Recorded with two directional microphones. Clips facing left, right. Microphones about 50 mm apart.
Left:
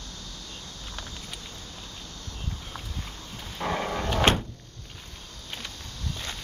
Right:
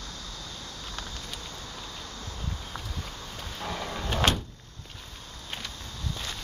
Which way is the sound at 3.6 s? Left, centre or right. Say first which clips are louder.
Left 6 dB; left.